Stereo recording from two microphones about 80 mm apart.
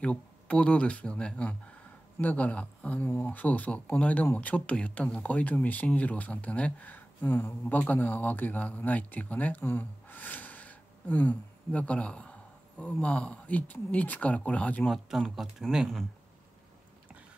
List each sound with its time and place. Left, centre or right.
0.0 s speech: centre
14.9 s speech: centre